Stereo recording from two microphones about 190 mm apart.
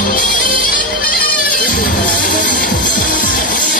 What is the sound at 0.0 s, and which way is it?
Music, 45° left (ahead or behind).